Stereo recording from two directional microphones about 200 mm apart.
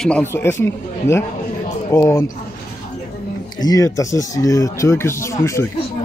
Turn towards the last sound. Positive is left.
turn(degrees=15)  # may be behind; listen again after turning